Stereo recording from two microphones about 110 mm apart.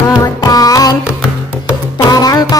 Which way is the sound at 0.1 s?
35° left (ahead or behind).